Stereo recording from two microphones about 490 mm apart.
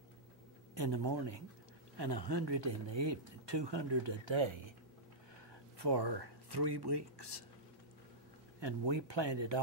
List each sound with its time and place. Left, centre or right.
0.7 s speech: right
5.8 s speech: right
8.5 s speech: right